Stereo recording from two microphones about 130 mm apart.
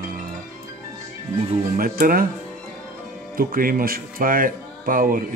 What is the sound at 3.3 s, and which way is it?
Speech, 90° right.